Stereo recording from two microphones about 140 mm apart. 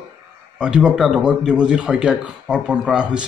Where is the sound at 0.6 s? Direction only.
5° right (ahead or behind).